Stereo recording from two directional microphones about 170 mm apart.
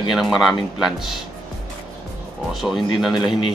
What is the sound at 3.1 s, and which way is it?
Speech, 25° left (ahead or behind).